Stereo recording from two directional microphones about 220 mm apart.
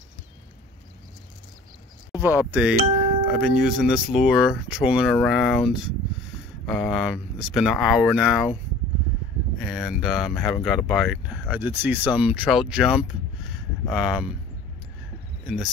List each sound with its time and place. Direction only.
2.2 s speech: 5° right (ahead or behind)
9.6 s speech: centre (ahead or behind)